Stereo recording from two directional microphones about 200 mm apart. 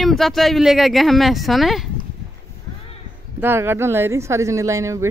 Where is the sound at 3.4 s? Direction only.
10° right (ahead or behind).